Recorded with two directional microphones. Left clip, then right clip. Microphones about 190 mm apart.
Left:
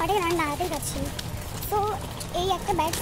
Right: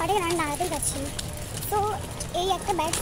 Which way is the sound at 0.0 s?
Centre (ahead or behind).